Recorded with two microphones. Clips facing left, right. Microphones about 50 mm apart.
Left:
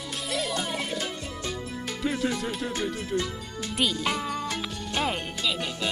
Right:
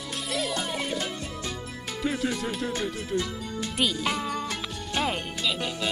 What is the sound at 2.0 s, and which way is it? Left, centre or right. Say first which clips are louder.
Speech: even; centre.